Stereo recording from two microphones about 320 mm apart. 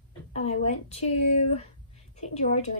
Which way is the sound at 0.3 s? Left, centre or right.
Centre.